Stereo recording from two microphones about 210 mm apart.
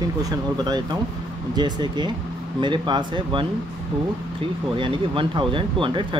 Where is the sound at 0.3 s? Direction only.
20° right (ahead or behind).